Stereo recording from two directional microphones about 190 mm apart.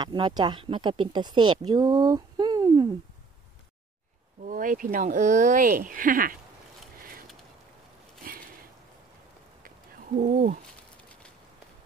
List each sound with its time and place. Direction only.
0.0 s speech: 25° right (ahead or behind)
4.5 s speech: 45° right (ahead or behind)
10.1 s speech: 40° right (ahead or behind)